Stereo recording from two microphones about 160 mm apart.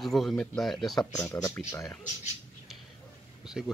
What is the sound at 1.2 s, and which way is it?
Speech, 15° left (ahead or behind).